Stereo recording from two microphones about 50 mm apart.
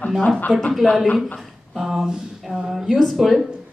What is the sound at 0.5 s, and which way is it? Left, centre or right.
A woman's voice, centre.